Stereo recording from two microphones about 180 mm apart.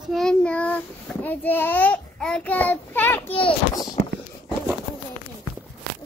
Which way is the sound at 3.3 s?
25° left (ahead or behind).